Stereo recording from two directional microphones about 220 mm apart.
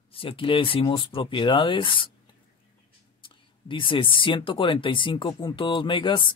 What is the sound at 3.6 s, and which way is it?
Speech, 25° left (ahead or behind).